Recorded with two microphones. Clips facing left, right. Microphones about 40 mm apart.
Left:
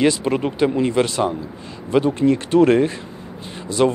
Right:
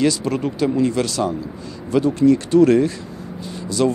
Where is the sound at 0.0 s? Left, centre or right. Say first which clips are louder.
Left 1 dB; left.